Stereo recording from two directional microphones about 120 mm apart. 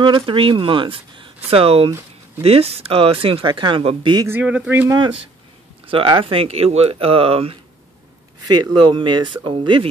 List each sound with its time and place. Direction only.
0.0 s speech: 45° right (ahead or behind)
4.3 s speech: 10° right (ahead or behind)
4.8 s speech: 35° right (ahead or behind)
5.9 s speech: 45° right (ahead or behind)
8.5 s speech: 40° right (ahead or behind)